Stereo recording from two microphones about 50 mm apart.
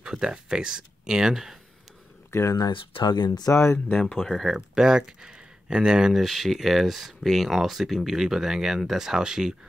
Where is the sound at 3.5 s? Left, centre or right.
Left.